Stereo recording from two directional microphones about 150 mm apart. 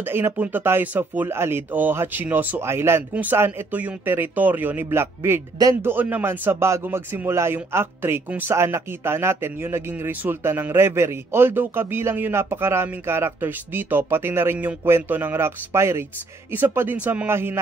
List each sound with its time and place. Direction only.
0.0 s speech: 15° right (ahead or behind)